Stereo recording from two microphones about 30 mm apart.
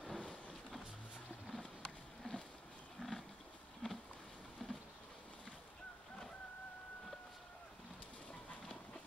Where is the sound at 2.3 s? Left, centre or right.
Left.